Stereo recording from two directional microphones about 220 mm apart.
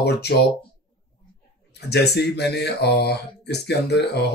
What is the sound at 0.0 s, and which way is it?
Speech, 50° left (ahead or behind).